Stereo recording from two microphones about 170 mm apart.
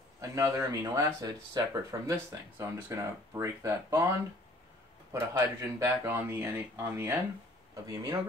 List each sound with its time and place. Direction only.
0.2 s speech: 20° right (ahead or behind)
5.3 s speech: 15° right (ahead or behind)